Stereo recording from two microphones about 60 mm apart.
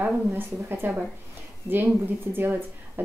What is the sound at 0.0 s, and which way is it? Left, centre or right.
Speech, right.